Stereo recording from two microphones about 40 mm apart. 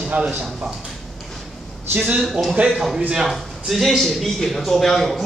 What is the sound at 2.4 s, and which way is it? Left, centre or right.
Speech, right.